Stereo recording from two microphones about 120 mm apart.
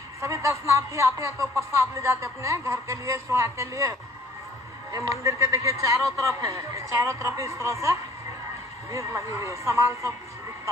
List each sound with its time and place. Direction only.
0.2 s speech: 25° right (ahead or behind)
4.9 s speech: 25° right (ahead or behind)